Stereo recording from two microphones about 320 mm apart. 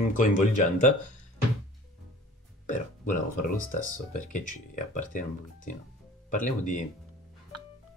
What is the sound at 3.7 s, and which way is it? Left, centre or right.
Speech, left.